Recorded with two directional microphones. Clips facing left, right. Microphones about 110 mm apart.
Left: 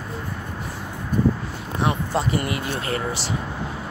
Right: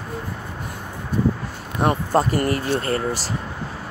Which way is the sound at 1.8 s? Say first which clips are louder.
Right 4 dB; 45° right (ahead or behind).